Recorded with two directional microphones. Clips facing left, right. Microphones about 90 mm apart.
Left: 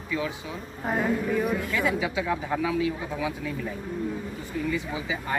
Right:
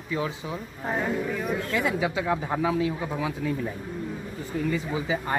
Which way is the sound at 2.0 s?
35° right (ahead or behind).